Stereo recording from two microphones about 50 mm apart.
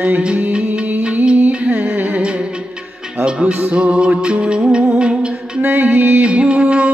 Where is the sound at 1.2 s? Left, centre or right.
Right.